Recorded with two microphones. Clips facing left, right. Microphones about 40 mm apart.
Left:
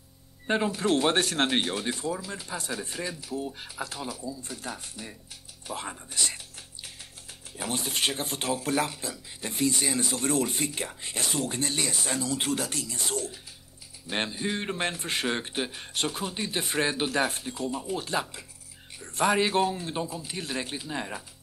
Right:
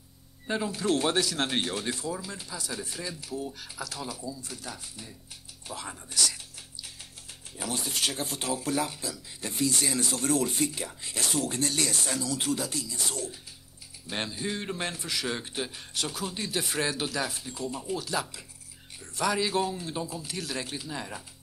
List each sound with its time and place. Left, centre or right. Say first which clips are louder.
0.5 s speech: left 3 dB; left
1.5 s speech: left 2 dB; left
2.4 s speech: left 3 dB; left
6.1 s music: right 3 dB; left
7.5 s speech: left 2 dB; left
9.8 s speech: left 1 dB; centre
10.1 s speech: right 2 dB; left
12.1 s speech: left 1 dB; left
12.5 s speech: left 1 dB; left
14.0 s speech: left 3 dB; left
17.1 s speech: left 5 dB; left